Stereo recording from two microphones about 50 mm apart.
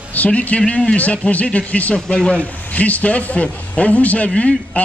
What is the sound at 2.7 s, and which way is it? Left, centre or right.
A man's voice, left.